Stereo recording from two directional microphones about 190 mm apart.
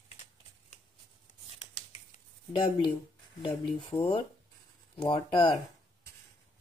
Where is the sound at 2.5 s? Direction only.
25° left (ahead or behind).